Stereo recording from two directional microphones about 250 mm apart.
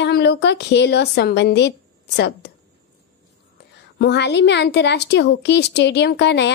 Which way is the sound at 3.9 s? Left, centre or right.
Left.